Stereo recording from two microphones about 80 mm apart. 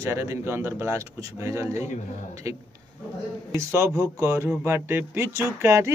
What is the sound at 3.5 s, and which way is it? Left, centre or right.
Speech, right.